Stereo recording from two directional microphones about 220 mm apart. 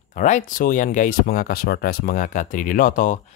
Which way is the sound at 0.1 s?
35° left (ahead or behind).